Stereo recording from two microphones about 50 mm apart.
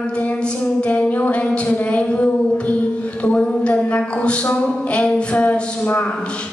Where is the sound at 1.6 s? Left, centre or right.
Left.